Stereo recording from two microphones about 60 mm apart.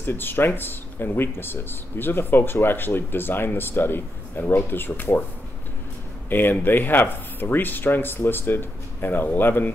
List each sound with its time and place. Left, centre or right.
0.0 s speech: left
6.3 s speech: left